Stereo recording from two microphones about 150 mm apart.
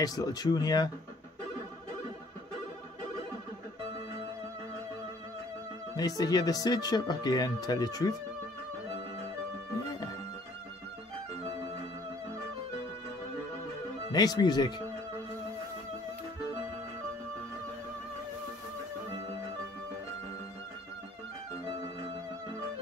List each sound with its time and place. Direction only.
0.0 s speech: 25° left (ahead or behind)
5.9 s speech: 25° left (ahead or behind)
14.1 s speech: 25° left (ahead or behind)